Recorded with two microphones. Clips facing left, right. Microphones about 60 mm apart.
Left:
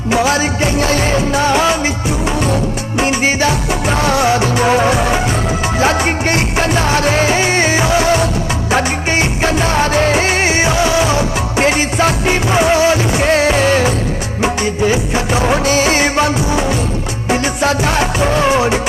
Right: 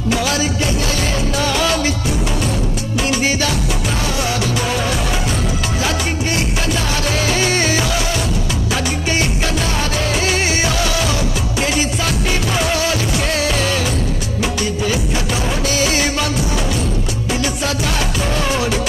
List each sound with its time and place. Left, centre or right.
0.1 s music: left
3.0 s music: left
4.0 s music: left
14.4 s music of bollywood: left
17.3 s music: left